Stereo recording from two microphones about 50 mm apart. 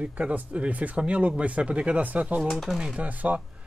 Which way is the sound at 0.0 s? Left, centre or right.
Right.